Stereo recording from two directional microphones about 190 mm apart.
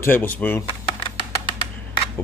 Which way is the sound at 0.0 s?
10° left (ahead or behind).